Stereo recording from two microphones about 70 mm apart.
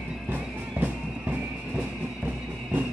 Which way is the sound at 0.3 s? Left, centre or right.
Right.